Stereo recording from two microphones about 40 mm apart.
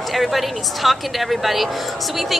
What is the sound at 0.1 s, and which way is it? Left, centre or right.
Speech, centre.